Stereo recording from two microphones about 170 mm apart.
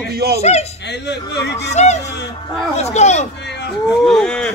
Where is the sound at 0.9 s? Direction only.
80° left.